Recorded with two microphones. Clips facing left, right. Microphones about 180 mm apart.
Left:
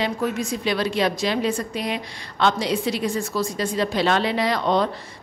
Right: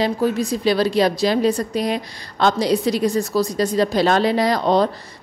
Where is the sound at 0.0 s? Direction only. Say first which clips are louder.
Right 5 dB; 35° right (ahead or behind).